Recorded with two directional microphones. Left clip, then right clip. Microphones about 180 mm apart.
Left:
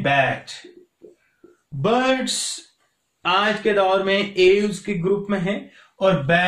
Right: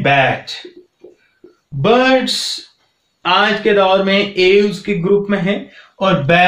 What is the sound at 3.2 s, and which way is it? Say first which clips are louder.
Speech: right 6 dB; 25° left (ahead or behind).